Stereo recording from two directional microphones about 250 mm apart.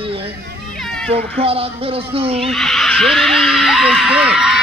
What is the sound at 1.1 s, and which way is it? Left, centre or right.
Speech, right.